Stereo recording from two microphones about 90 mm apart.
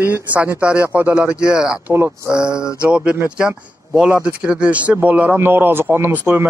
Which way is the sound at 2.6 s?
10° right (ahead or behind).